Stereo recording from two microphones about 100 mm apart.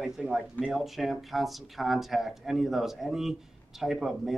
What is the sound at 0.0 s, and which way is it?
Speech, 5° right (ahead or behind).